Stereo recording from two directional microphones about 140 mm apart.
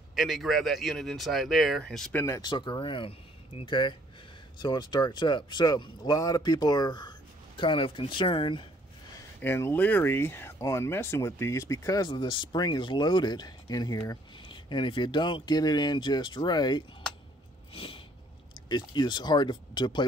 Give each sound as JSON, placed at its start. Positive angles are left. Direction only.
{"t": 0.1, "sound": "speech", "side_deg": 0}
{"t": 2.1, "sound": "speech", "side_deg": 20}
{"t": 2.4, "sound": "speech", "side_deg": 30}
{"t": 9.4, "sound": "speech", "side_deg": 15}
{"t": 17.7, "sound": "a sound", "side_deg": 40}
{"t": 18.5, "sound": "speech", "side_deg": 30}